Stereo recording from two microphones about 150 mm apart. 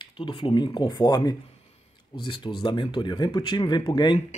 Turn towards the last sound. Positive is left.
turn(degrees=30)  # may be behind; listen again after turning